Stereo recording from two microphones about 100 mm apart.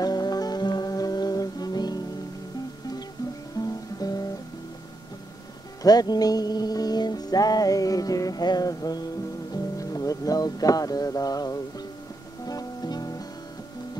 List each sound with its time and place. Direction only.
0.0 s music: 40° left (ahead or behind)
3.6 s guitar: 40° left (ahead or behind)
5.8 s music: 40° left (ahead or behind)